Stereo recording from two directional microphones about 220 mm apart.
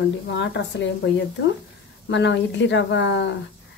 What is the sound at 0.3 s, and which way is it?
Speech, 55° left (ahead or behind).